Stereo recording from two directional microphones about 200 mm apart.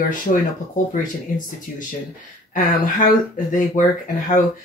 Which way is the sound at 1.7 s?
40° left (ahead or behind).